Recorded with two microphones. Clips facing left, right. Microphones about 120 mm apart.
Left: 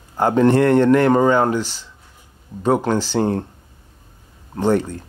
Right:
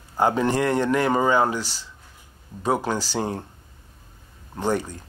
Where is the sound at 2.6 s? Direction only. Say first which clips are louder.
Left 6 dB; 10° right (ahead or behind).